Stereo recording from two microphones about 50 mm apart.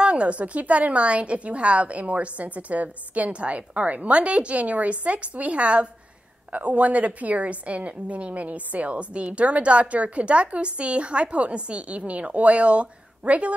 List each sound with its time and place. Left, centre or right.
0.0 s a woman's voice: right